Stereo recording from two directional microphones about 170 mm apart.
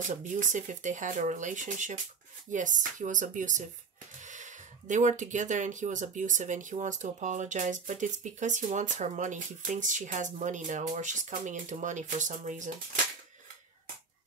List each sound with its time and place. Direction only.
0.0 s speech: 50° right (ahead or behind)